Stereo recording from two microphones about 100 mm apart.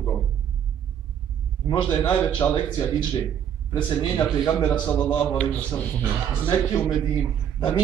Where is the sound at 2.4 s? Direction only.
30° left (ahead or behind).